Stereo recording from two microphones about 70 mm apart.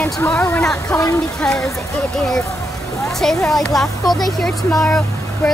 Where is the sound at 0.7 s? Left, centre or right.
Left.